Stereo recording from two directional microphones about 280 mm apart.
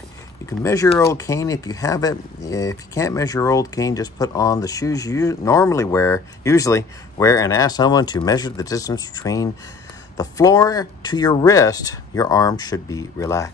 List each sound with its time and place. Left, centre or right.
0.5 s speech: centre